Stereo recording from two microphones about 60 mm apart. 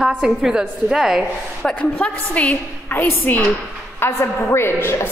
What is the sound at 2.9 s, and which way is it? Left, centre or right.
A woman's voice, left.